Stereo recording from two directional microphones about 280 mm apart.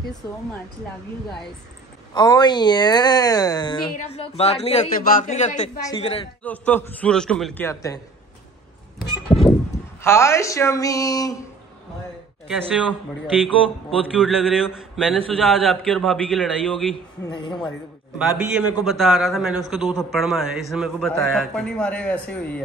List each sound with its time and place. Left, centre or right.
2.1 s speech: centre
5.8 s a man's voice: centre
10.0 s speech: centre
12.4 s a man's voice: centre
17.3 s speech: centre
18.4 s a man's voice: centre